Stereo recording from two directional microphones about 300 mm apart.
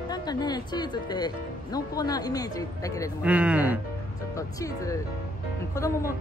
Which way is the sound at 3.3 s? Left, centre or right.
Centre.